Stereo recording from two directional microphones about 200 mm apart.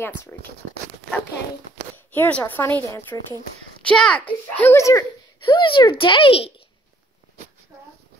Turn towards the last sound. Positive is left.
turn(degrees=25)  # may be behind; listen again after turning